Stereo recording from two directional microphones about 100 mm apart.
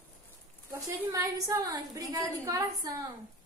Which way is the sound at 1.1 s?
35° right (ahead or behind).